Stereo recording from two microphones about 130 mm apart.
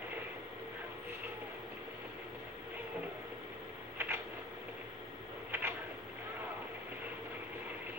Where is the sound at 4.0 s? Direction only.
15° right (ahead or behind).